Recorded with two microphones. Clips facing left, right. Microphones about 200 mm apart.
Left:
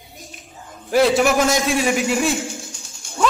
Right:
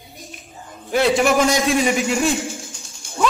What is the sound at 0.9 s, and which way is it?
A man's voice, centre (ahead or behind).